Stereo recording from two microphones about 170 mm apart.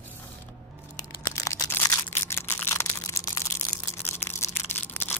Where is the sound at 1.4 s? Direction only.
20° left (ahead or behind).